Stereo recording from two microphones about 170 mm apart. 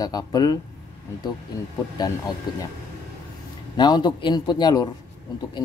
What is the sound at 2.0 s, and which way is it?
Speech, 25° left (ahead or behind).